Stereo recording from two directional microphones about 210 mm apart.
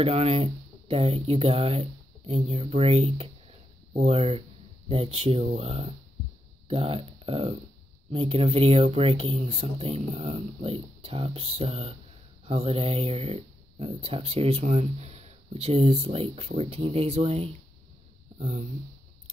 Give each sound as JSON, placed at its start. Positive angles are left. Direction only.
{"t": 0.0, "sound": "speech", "side_deg": -30}